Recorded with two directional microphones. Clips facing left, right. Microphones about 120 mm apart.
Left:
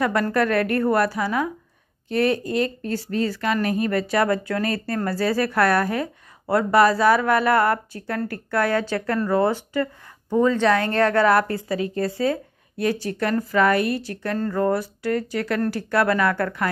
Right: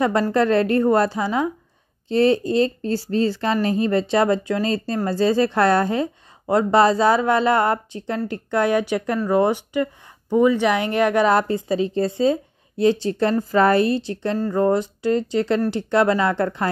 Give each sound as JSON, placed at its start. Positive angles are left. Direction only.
{"t": 0.0, "sound": "speech", "side_deg": -25}